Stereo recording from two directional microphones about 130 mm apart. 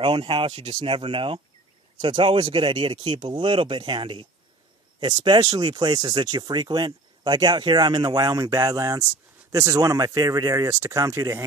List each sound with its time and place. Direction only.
0.0 s speech: 45° right (ahead or behind); by 11.4 s 25° right (ahead or behind)